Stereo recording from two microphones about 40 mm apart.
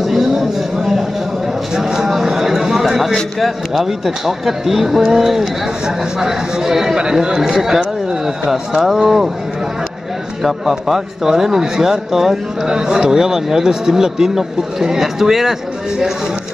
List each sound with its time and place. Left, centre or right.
0.0 s a sound: centre
3.3 s a man's voice: centre
10.4 s a man's voice: centre